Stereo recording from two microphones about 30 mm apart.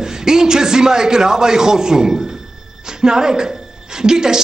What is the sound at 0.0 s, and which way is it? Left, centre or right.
A man's voice, right.